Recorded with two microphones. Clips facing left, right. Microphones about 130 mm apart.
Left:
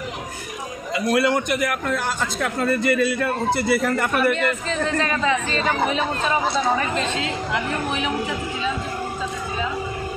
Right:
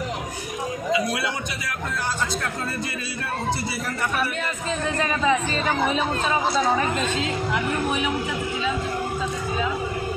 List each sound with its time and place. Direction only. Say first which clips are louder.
1.1 s a man's voice: left 9 dB; 55° left (ahead or behind)
4.6 s a woman's voice: left 2 dB; 5° right (ahead or behind)